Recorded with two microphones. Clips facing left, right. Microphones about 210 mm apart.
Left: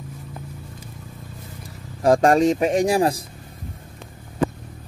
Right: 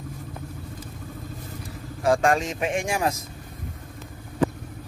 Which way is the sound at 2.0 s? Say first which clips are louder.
Left 6 dB; 40° left (ahead or behind).